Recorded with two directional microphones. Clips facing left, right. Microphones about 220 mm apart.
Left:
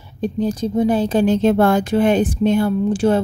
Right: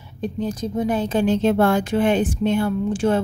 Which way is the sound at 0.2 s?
35° left (ahead or behind).